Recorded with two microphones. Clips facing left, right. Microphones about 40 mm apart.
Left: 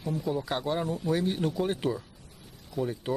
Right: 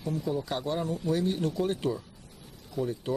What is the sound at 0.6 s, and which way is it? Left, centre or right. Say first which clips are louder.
Speech: left 1 dB; left.